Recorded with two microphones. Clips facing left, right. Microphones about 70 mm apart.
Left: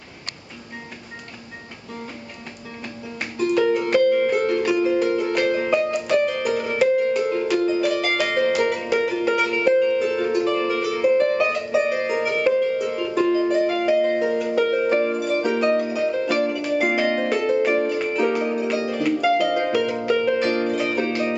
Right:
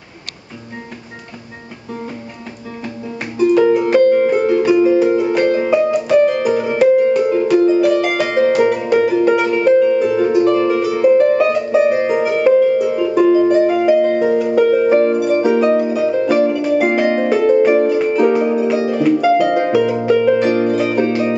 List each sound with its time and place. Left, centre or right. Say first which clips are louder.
3.3 s music: right 8 dB; centre